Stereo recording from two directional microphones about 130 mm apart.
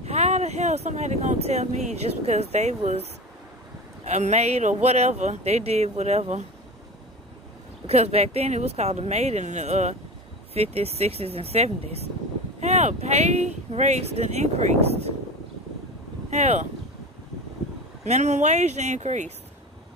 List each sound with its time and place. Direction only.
0.0 s speech: 55° right (ahead or behind)
4.0 s speech: 60° right (ahead or behind)
7.8 s speech: 55° right (ahead or behind)
16.3 s speech: 60° right (ahead or behind)
18.0 s speech: 65° right (ahead or behind)